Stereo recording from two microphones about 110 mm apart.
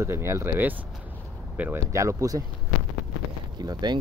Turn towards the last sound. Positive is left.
turn(degrees=-40)  # may be behind; listen again after turning